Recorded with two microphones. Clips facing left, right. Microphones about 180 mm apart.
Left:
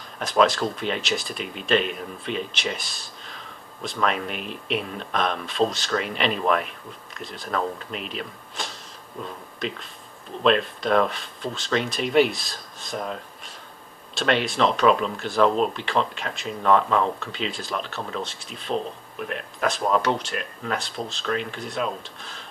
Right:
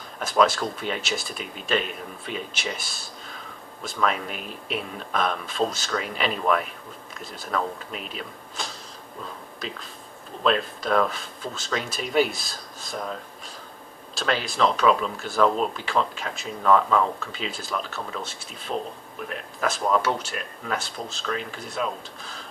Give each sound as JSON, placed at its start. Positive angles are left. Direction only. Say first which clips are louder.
{"t": 0.2, "sound": "speech", "louder": "left 1 dB", "side_deg": -5}
{"t": 10.4, "sound": "speech", "louder": "left 3 dB", "side_deg": 0}
{"t": 14.1, "sound": "speech", "louder": "left 4 dB", "side_deg": 0}